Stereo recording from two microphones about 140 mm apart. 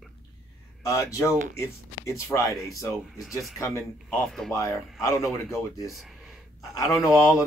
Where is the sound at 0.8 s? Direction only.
20° left (ahead or behind).